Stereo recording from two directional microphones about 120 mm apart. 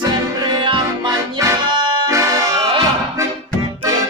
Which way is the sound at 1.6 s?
40° right (ahead or behind).